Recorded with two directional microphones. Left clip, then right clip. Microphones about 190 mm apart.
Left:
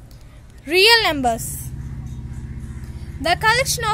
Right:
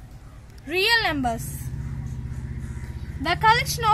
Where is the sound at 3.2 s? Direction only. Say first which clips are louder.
Left 2 dB; 45° left (ahead or behind).